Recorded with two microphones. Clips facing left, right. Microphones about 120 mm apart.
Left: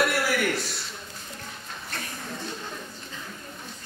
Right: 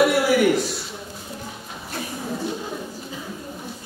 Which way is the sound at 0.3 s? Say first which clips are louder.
Right 9 dB; 5° right (ahead or behind).